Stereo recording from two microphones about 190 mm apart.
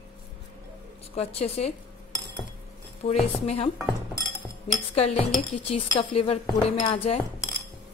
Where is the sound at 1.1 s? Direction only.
35° left (ahead or behind).